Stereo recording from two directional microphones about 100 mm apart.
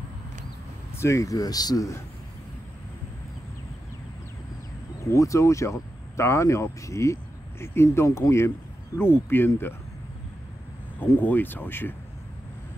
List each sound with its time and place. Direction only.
0.9 s speech: 30° left (ahead or behind)
5.1 s speech: 30° left (ahead or behind)
11.0 s speech: 20° left (ahead or behind)